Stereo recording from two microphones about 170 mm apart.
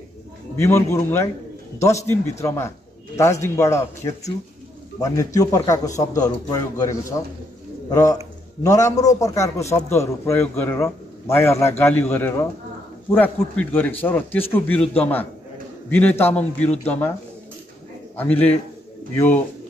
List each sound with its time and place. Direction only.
0.6 s a man's voice: 15° left (ahead or behind)
18.1 s a man's voice: 10° left (ahead or behind)